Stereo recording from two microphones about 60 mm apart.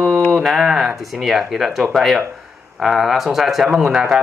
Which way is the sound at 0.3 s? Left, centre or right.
Centre.